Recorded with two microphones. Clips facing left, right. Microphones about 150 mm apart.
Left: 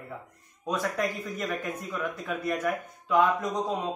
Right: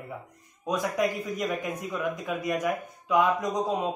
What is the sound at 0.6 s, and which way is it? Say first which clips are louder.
A man's voice: right 2 dB; 10° right (ahead or behind).